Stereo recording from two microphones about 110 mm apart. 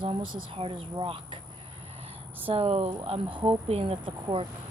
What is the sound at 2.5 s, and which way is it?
Speech, 65° right (ahead or behind).